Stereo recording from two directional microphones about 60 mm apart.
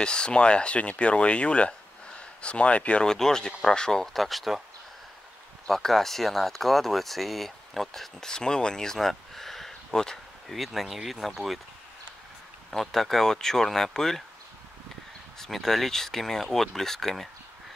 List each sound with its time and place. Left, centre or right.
0.0 s speech: centre
5.7 s speech: centre
12.7 s speech: centre
15.3 s speech: centre